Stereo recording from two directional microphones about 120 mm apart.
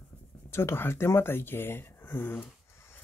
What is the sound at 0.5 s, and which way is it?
Speech, 20° left (ahead or behind).